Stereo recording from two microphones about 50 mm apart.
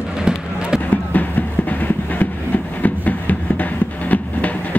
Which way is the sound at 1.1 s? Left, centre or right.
Left.